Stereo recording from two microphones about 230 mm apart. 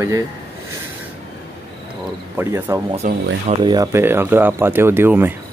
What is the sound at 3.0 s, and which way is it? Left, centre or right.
Speech, right.